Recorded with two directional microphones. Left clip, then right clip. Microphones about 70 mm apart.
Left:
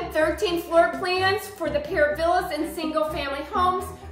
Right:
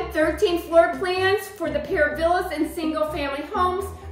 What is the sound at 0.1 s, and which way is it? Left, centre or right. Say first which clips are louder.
A woman's voice: right 2 dB; left.